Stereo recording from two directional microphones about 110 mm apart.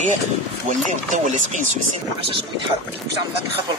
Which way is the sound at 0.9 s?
90° right.